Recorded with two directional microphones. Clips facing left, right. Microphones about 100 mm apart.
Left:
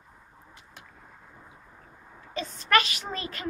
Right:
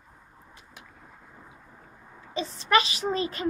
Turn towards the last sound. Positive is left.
turn(degrees=-25)  # may be behind; listen again after turning